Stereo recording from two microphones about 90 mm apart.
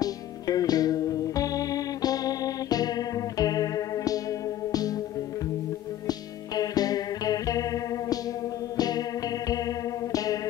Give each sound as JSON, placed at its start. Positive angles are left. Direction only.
{"t": 0.0, "sound": "music", "side_deg": 45}
{"t": 6.0, "sound": "music", "side_deg": 45}
{"t": 10.1, "sound": "music", "side_deg": 40}